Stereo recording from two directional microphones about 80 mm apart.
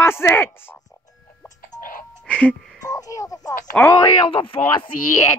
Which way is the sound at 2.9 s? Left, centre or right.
Left.